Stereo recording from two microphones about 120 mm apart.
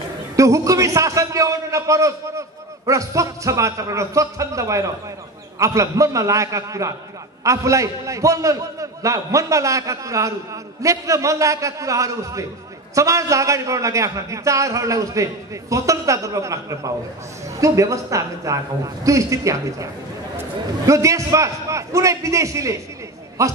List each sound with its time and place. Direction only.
0.4 s a man's voice: 25° right (ahead or behind)